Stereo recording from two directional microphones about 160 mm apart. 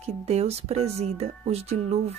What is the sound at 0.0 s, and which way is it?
Speech, 40° right (ahead or behind).